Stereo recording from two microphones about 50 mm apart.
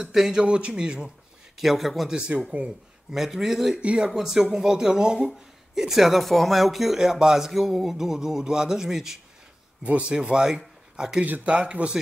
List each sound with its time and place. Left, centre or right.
0.0 s speech: centre
1.6 s speech: centre
2.1 s speech: right
3.1 s speech: centre
3.8 s speech: centre
9.8 s speech: right